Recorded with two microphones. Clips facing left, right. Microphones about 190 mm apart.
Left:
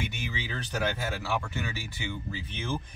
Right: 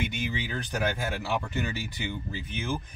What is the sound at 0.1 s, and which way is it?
Speech, 15° right (ahead or behind).